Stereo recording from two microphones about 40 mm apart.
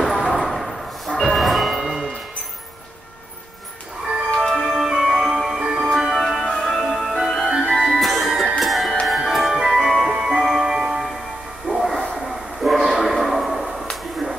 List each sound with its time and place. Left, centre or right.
0.2 s train: centre
1.8 s music: centre
4.6 s music: centre
6.3 s music: centre
11.6 s bow-wow: centre
12.1 s train: centre
14.2 s a sound: centre